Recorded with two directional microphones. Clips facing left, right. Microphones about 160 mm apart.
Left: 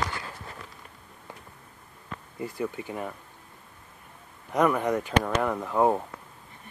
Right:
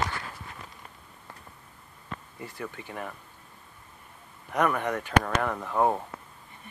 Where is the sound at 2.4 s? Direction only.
20° left (ahead or behind).